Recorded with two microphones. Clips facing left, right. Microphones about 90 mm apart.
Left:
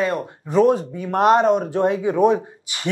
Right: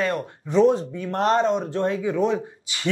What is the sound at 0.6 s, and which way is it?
A man's voice, 5° left (ahead or behind).